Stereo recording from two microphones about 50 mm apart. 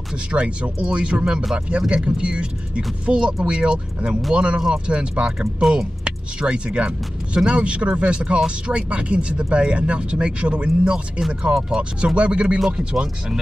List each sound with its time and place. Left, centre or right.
0.3 s speech: right
2.1 s speech: right
12.5 s speech: centre